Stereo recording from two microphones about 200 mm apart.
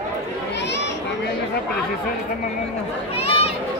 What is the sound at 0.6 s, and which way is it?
Children playing, 60° left (ahead or behind).